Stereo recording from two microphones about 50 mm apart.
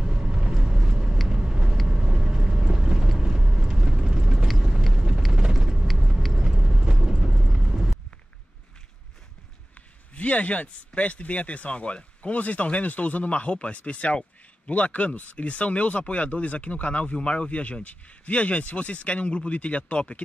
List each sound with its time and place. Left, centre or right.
0.0 s vehicle: centre
6.4 s vehicle: centre
10.1 s speech: left